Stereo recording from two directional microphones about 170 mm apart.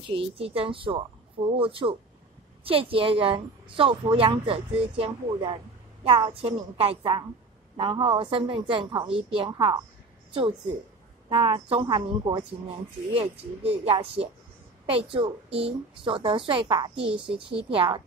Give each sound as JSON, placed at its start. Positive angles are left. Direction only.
{"t": 0.1, "sound": "a woman's voice", "side_deg": -35}
{"t": 11.2, "sound": "a woman's voice", "side_deg": -25}
{"t": 17.1, "sound": "a woman's voice", "side_deg": -5}
{"t": 17.6, "sound": "speech", "side_deg": -30}